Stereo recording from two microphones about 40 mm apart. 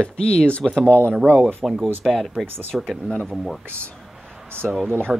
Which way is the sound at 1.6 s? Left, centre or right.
Centre.